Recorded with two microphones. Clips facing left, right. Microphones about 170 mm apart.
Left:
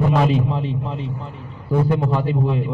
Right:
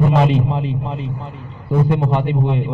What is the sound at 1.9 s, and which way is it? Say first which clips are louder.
Speech: right 2 dB; 20° right (ahead or behind).